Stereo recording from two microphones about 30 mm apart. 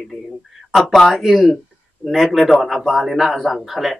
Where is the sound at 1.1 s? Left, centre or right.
Centre.